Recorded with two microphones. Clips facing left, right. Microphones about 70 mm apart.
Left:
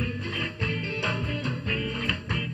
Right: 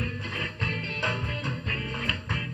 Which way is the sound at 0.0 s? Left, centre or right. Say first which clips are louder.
Left 2 dB; centre.